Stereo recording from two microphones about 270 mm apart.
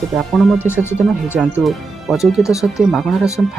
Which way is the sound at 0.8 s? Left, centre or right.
Centre.